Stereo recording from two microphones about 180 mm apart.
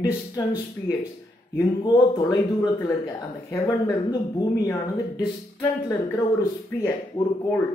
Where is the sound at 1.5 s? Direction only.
20° left (ahead or behind).